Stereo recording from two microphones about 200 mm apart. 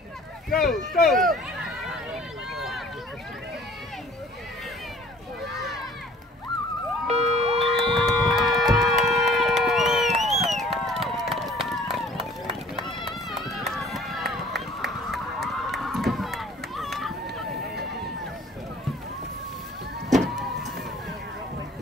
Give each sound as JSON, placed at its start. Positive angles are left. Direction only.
{"t": 0.6, "sound": "speech", "side_deg": 0}
{"t": 2.5, "sound": "run", "side_deg": 0}
{"t": 7.1, "sound": "emergency vehicle", "side_deg": -30}
{"t": 7.8, "sound": "a sound", "side_deg": 0}
{"t": 9.0, "sound": "run", "side_deg": 0}
{"t": 9.6, "sound": "a sound", "side_deg": 0}
{"t": 10.6, "sound": "run", "side_deg": 0}